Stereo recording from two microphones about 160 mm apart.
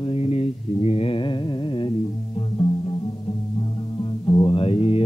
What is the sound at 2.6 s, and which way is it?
Music, 40° left (ahead or behind).